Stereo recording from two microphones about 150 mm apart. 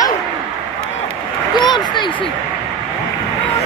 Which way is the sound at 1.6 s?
30° left (ahead or behind).